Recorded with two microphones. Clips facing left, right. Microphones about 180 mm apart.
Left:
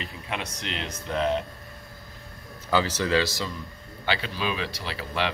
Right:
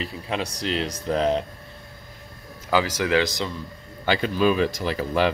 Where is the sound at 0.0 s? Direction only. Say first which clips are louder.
Right 6 dB; 35° right (ahead or behind).